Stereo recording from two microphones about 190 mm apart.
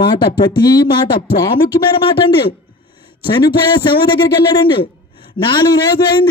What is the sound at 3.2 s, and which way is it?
Speech, 25° left (ahead or behind).